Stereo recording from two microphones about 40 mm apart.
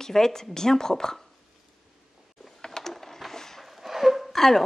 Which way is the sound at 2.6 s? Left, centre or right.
Centre.